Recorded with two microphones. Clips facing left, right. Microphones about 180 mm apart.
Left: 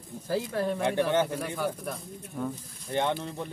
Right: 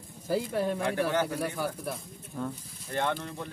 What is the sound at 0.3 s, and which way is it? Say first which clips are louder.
Speech: even; 10° right (ahead or behind).